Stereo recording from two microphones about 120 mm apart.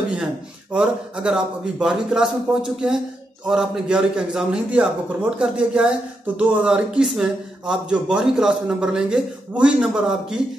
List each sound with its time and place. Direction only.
0.7 s speech: 5° right (ahead or behind)